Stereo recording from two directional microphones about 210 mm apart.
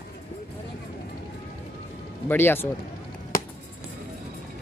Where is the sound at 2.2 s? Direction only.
10° left (ahead or behind).